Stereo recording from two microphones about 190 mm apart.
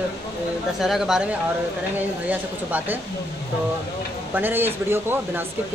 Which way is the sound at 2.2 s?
10° right (ahead or behind).